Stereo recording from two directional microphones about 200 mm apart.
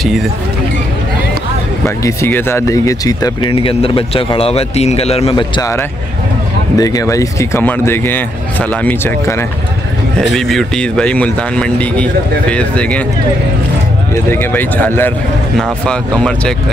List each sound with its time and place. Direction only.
2.0 s speech: 10° left (ahead or behind)
3.6 s a man's voice: 30° left (ahead or behind)
5.6 s speech: 15° left (ahead or behind)
10.3 s speech: centre (ahead or behind)
14.1 s speech: 10° left (ahead or behind)